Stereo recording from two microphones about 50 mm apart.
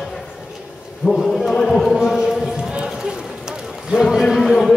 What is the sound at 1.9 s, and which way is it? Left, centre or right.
Speech, centre.